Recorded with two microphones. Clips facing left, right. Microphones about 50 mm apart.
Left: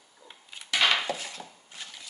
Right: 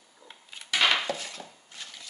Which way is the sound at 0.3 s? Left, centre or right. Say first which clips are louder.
Even; centre.